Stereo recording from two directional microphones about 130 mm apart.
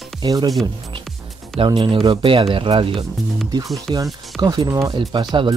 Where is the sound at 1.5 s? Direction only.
35° right (ahead or behind).